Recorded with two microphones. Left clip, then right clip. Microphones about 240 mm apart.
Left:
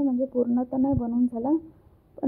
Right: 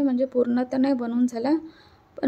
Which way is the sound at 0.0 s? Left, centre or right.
Centre.